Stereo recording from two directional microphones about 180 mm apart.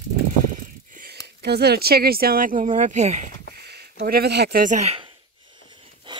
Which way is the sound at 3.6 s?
60° right (ahead or behind).